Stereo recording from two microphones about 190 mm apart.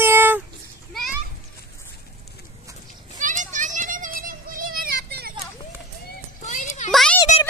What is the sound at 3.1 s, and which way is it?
Children playing, 40° right (ahead or behind).